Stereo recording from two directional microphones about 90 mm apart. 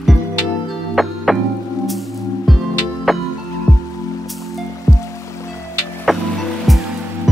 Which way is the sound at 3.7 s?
10° left (ahead or behind).